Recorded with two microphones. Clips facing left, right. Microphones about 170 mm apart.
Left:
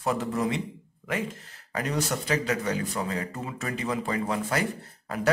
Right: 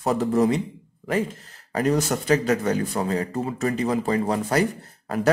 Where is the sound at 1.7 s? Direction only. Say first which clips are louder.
Right 7 dB; 45° right (ahead or behind).